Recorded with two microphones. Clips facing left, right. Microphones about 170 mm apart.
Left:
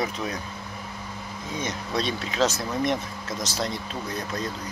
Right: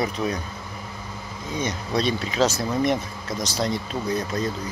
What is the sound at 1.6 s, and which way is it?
Speech, centre (ahead or behind).